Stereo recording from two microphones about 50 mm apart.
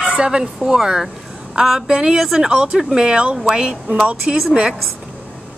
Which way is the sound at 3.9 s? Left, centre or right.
Right.